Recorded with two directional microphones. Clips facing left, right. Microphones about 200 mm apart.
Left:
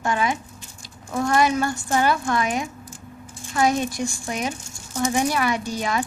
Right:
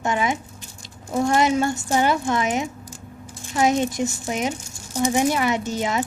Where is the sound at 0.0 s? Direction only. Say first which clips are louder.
Right 1 dB; 20° right (ahead or behind).